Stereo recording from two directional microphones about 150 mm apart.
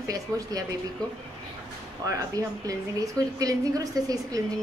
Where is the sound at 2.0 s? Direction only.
20° right (ahead or behind).